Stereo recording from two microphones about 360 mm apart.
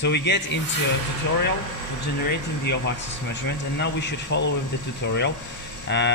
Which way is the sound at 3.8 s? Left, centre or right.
Left.